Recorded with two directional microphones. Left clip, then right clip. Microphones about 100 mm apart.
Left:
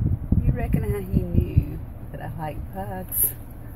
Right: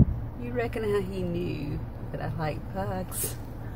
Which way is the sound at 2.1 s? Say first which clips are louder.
Even; 20° right (ahead or behind).